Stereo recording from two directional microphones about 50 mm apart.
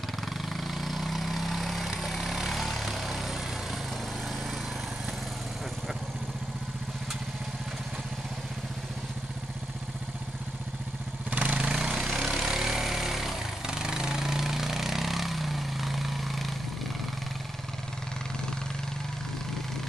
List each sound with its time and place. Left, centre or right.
0.5 s vehicle: centre
11.2 s vehicle: right
12.1 s vehicle: centre
13.7 s a sound: centre